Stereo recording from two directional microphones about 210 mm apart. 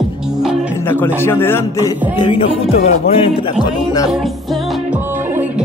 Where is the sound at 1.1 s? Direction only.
10° left (ahead or behind).